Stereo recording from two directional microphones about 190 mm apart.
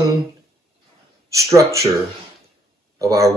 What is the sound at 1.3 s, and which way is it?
Speech, 15° right (ahead or behind).